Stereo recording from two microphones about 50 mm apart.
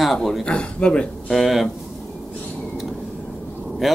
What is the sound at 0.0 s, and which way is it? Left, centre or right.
Speech, centre.